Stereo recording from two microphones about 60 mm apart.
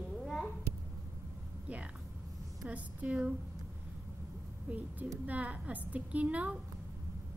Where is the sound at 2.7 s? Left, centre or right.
Right.